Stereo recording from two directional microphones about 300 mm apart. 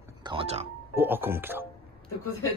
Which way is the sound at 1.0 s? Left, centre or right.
Centre.